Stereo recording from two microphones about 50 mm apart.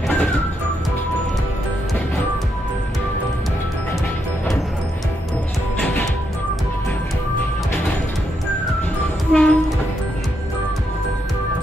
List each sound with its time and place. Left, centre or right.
5.8 s music: left
9.3 s train: centre